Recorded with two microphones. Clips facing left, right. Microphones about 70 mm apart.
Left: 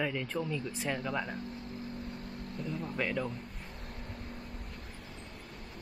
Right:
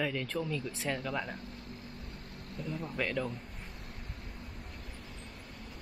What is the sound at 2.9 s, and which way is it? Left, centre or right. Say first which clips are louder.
Speech: even; centre.